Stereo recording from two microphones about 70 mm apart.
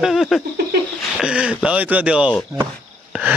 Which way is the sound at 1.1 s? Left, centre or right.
Centre.